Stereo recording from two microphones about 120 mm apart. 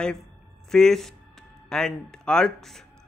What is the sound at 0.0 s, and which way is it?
Speech, 5° left (ahead or behind).